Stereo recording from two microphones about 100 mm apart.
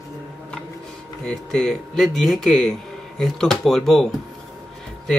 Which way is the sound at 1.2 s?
5° left (ahead or behind).